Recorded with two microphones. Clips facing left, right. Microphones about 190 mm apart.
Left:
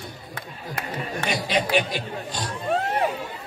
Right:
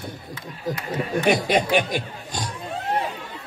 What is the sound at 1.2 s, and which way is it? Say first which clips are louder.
Speech: right 5 dB; 50° right (ahead or behind).